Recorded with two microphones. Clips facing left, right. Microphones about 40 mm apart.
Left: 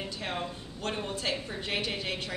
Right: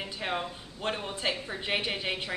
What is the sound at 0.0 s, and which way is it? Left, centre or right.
Speech, centre.